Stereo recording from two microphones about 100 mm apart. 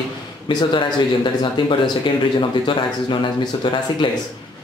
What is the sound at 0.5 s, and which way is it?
Speech, 45° left (ahead or behind).